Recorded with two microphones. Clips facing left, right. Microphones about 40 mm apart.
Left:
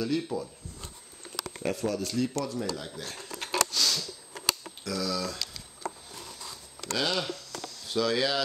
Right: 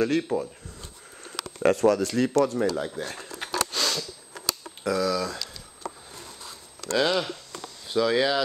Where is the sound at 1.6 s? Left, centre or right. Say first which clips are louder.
Right 10 dB; right.